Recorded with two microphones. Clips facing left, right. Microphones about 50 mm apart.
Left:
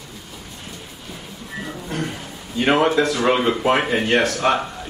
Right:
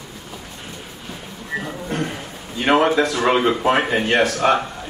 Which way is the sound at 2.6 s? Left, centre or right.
Centre.